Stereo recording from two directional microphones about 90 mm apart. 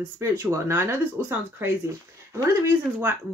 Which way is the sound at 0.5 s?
30° right (ahead or behind).